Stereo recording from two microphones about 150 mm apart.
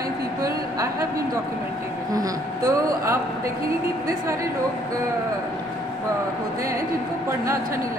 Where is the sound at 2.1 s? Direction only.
25° right (ahead or behind).